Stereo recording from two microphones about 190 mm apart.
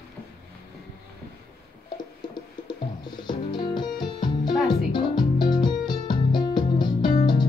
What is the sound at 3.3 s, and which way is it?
Music, 25° left (ahead or behind).